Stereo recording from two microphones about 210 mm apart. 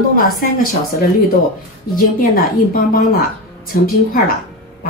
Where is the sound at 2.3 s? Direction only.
45° left (ahead or behind).